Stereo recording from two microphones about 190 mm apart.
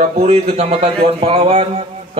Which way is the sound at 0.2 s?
35° right (ahead or behind).